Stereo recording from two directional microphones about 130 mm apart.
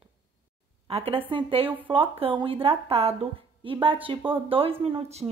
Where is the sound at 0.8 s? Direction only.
50° right (ahead or behind).